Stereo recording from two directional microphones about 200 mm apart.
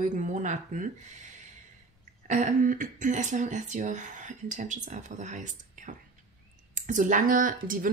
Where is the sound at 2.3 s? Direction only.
40° right (ahead or behind).